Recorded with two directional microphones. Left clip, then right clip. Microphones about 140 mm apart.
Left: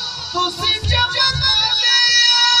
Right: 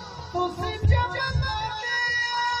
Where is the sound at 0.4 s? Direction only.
35° right (ahead or behind).